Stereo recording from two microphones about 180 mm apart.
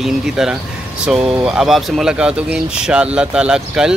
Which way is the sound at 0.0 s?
Centre (ahead or behind).